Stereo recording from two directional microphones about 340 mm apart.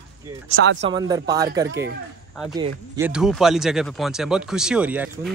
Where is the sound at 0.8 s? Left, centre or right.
Centre.